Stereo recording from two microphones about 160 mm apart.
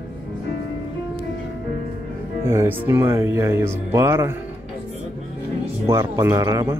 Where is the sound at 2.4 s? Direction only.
15° right (ahead or behind).